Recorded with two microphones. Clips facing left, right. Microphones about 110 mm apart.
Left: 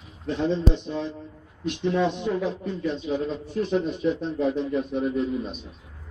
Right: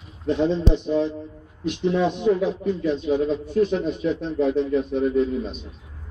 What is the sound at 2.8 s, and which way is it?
A man's voice, centre (ahead or behind).